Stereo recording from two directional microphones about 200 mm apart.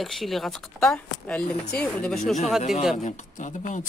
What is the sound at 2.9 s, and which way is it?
Speech, 40° left (ahead or behind).